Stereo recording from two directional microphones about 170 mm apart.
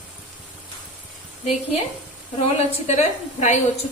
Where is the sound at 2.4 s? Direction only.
35° left (ahead or behind).